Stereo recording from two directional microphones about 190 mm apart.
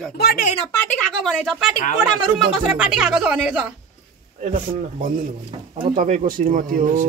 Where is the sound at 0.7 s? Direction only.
5° left (ahead or behind).